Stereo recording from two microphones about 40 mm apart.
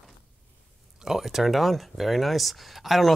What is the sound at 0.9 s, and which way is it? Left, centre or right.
Speech, centre.